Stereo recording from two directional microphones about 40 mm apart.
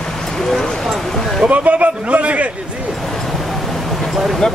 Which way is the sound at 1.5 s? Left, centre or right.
Right.